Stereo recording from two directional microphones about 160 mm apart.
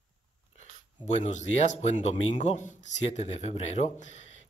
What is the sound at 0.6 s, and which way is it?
A man's voice, 45° left (ahead or behind).